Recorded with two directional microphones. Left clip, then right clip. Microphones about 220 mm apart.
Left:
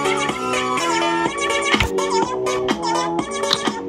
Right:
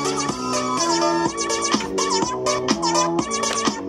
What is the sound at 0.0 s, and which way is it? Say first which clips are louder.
Music: left 4 dB; 55° right (ahead or behind).